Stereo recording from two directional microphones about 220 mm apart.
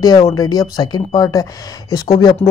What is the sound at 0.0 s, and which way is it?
Speech, 15° left (ahead or behind).